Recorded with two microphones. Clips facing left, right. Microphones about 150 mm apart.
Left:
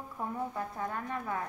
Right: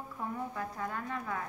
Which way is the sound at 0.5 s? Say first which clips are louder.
Left 1 dB; 25° left (ahead or behind).